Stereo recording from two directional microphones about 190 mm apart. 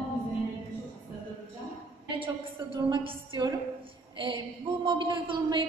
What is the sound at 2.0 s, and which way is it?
A woman's voice, 25° right (ahead or behind).